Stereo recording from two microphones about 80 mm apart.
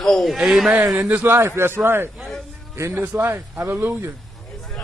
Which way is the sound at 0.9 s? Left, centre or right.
Right.